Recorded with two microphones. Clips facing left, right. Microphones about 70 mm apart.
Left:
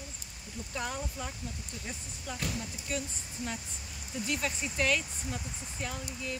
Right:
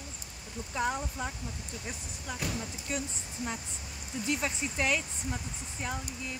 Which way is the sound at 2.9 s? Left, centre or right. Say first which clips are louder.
Even; right.